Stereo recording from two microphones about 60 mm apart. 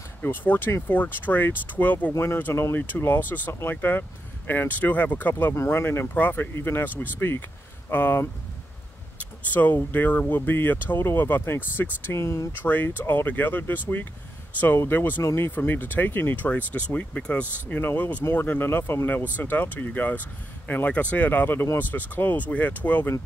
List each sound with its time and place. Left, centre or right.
0.2 s speech: left
2.1 s speech: left
5.5 s speech: left
6.1 s speech: left
9.5 s speech: left
12.5 s speech: left
16.4 s speech: left